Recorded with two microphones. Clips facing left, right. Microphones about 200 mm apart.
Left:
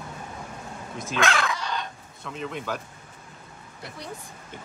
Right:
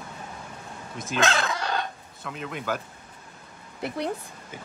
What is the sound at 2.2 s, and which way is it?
Speech, centre (ahead or behind).